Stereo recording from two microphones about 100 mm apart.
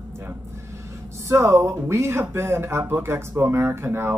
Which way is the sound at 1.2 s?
30° right (ahead or behind).